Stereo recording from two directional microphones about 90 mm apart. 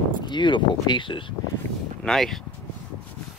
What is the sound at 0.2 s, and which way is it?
Speech, 60° left (ahead or behind).